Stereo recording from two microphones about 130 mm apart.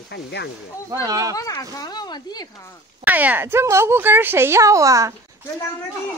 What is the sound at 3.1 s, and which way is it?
Speech, 15° right (ahead or behind).